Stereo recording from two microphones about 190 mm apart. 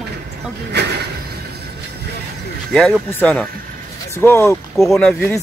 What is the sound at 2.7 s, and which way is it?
Speech, 5° left (ahead or behind).